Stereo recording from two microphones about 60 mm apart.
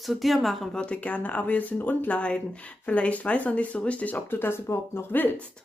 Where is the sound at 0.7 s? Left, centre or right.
Left.